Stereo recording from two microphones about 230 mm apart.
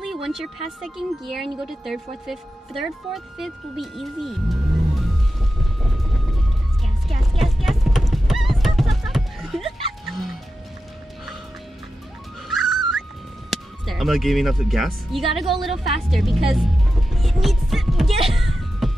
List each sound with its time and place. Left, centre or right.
0.0 s speech: centre
7.1 s clip-clop: centre
12.4 s music: centre
13.5 s speech: centre
18.3 s a sound: centre